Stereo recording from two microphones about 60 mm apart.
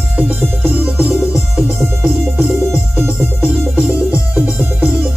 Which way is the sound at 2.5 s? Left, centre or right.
Centre.